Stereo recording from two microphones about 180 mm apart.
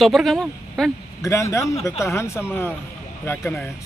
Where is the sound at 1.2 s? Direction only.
15° left (ahead or behind).